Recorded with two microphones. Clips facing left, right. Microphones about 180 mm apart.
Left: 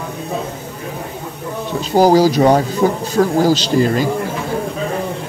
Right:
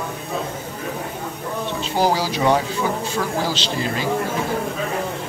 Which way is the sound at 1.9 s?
40° left (ahead or behind).